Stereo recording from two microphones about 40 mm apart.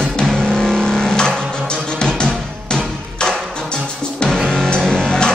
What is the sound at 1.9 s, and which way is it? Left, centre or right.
Music, left.